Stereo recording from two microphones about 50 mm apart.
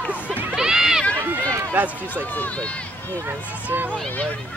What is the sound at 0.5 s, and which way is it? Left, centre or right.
Speech, centre.